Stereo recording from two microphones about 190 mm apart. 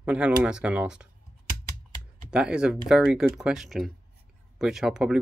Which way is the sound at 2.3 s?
5° right (ahead or behind).